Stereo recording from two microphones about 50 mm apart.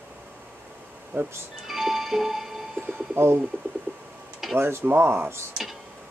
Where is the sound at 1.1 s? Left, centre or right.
Right.